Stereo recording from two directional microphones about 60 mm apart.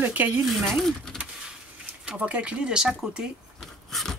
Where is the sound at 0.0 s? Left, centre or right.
Right.